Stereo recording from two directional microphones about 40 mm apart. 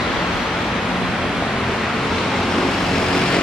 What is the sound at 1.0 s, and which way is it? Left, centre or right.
Vehicle, centre.